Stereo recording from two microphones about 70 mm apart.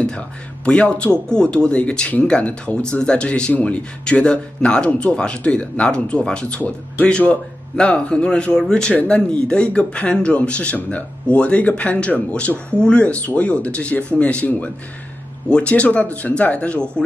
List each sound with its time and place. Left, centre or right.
0.7 s speech: centre